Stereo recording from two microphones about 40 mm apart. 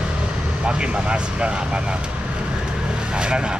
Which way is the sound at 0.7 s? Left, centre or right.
Right.